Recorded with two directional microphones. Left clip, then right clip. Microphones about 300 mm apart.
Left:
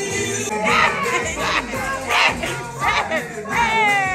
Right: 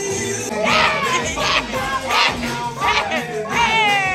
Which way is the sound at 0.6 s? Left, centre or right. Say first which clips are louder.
Right 1 dB; centre.